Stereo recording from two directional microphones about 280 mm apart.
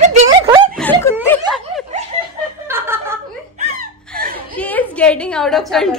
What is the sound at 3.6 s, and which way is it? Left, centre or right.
Laughter, right.